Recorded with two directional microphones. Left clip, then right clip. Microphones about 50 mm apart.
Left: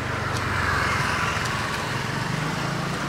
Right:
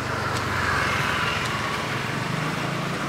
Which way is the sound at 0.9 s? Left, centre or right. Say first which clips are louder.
Even; centre.